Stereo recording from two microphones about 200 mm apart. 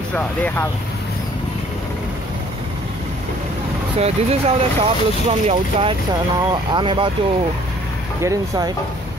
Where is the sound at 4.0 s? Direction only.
30° right (ahead or behind).